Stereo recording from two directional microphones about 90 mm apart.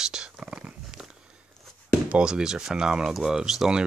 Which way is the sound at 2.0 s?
10° right (ahead or behind).